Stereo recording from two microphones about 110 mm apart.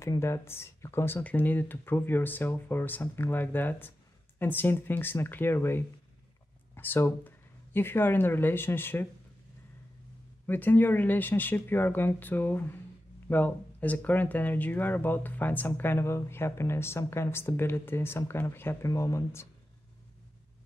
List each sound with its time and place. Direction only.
0.0 s speech: 25° left (ahead or behind)
10.4 s speech: 15° left (ahead or behind)